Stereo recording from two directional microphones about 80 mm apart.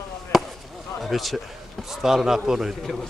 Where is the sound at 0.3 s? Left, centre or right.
Centre.